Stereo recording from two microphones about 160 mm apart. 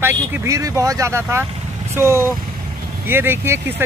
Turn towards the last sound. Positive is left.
turn(degrees=-15)  # may be behind; listen again after turning